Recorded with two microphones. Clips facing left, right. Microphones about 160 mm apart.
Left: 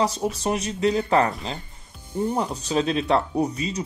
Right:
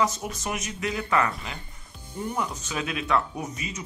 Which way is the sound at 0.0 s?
30° left (ahead or behind).